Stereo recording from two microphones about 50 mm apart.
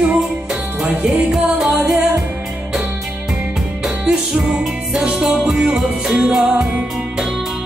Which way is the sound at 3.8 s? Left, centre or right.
Centre.